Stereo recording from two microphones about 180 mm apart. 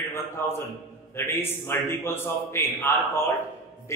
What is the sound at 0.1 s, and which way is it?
A man's voice, 15° left (ahead or behind).